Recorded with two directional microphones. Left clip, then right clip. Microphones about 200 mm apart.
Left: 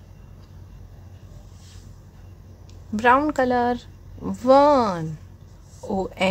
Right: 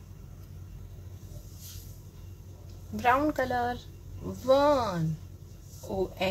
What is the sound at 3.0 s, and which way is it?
Speech, 35° left (ahead or behind).